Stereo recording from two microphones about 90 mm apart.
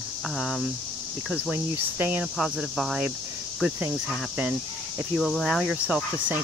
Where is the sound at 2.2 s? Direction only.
10° right (ahead or behind).